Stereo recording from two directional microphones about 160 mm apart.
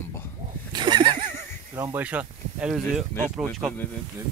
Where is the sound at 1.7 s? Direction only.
15° right (ahead or behind); by 3.9 s 5° left (ahead or behind).